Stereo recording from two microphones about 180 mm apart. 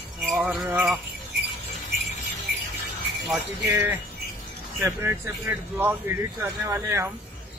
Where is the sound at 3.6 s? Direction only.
10° right (ahead or behind).